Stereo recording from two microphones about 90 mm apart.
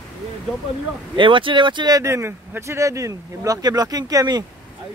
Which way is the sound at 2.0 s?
30° right (ahead or behind).